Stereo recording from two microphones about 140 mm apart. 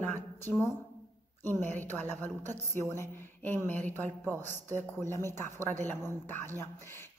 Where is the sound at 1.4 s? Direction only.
15° left (ahead or behind).